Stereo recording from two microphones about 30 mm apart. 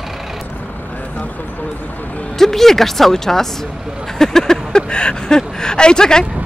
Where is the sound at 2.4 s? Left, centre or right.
Centre.